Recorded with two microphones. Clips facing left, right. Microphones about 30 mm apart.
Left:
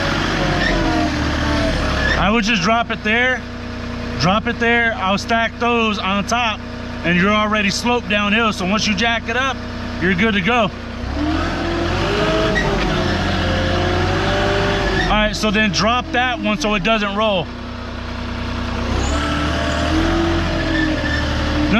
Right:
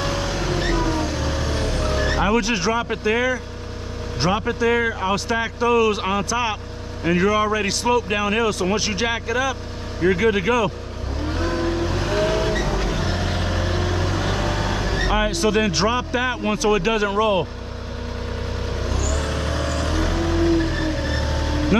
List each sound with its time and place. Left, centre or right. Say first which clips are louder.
0.0 s vehicle: left 6 dB; left
2.2 s a man's voice: left 4 dB; left
11.2 s vehicle: left 3 dB; left
15.0 s a man's voice: left 3 dB; left
18.9 s vehicle: left 6 dB; left